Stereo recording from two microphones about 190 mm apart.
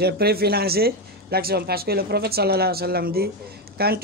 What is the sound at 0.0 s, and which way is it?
A man's voice, 55° right (ahead or behind).